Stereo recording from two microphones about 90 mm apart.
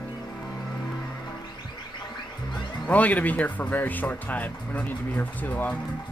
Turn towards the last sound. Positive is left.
turn(degrees=20)  # may be behind; listen again after turning